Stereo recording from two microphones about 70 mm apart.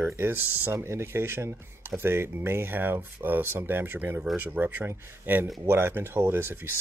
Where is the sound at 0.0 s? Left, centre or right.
Right.